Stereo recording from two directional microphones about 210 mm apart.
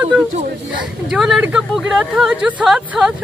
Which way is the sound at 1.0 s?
Centre (ahead or behind).